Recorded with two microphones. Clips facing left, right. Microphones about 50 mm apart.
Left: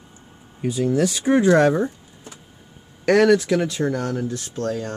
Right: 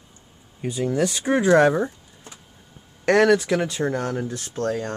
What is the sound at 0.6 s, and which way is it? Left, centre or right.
Speech, centre.